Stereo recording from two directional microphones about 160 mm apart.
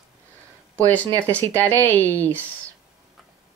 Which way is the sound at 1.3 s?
10° left (ahead or behind).